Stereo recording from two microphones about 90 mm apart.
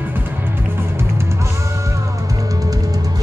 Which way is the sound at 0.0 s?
20° right (ahead or behind).